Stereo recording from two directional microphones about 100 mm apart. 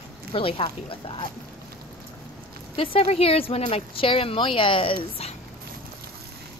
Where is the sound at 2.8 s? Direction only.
70° left (ahead or behind).